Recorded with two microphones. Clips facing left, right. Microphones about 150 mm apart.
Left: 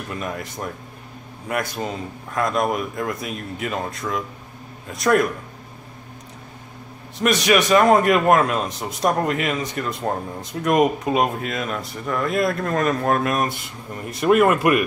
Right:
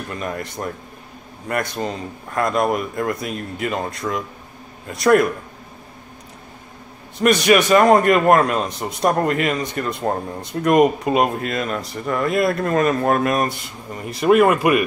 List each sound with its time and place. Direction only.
0.1 s a man's voice: centre (ahead or behind)
7.2 s a man's voice: centre (ahead or behind)